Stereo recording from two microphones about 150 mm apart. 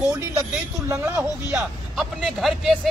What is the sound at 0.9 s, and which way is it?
Speech, 10° right (ahead or behind).